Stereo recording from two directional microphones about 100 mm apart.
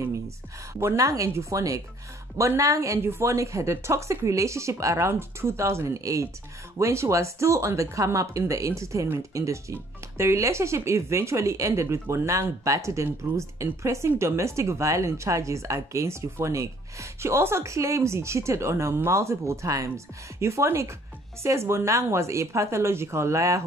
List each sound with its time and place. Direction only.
0.7 s speech: 30° right (ahead or behind)